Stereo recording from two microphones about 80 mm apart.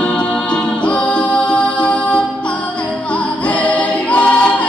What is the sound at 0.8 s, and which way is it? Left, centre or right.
Music, centre.